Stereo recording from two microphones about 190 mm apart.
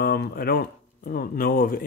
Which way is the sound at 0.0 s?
55° left (ahead or behind).